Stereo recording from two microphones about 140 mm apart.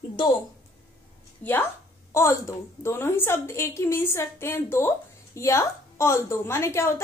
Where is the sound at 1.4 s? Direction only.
15° left (ahead or behind).